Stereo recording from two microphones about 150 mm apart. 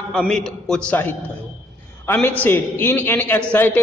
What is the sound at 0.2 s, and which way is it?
A man's voice, 5° left (ahead or behind).